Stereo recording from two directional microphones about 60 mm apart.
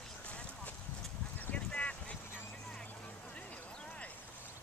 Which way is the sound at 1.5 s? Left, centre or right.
Centre.